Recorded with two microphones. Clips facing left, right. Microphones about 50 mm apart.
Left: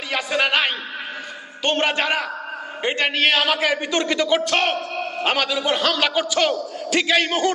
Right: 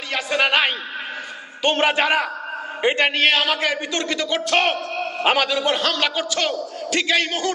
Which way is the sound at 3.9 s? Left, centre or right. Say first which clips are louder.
Left 4 dB; left.